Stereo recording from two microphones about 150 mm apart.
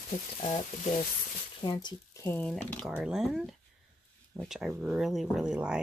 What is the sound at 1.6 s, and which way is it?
Speech, 25° left (ahead or behind).